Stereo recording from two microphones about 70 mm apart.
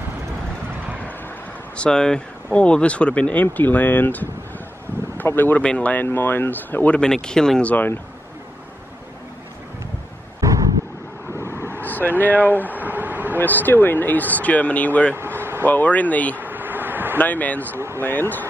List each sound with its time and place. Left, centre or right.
1.8 s speech: centre; by 5.6 s left
5.6 s speech: centre
7.0 s speech: centre
7.6 s speech: left
10.4 s vehicle: right
11.8 s speech: left
12.7 s vehicle: right
13.4 s speech: left
15.1 s a sound: right
15.6 s speech: left
16.3 s bee: right
17.2 s speech: left
17.7 s speech: right